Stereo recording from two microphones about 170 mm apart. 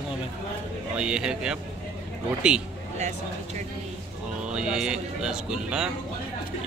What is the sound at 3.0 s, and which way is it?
Speech, 45° right (ahead or behind).